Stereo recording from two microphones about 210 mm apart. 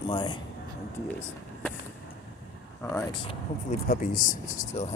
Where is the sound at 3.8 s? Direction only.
40° left (ahead or behind).